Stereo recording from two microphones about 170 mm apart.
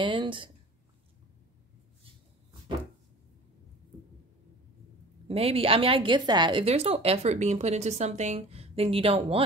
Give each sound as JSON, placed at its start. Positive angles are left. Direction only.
{"t": 0.0, "sound": "speech", "side_deg": -30}
{"t": 5.3, "sound": "speech", "side_deg": -35}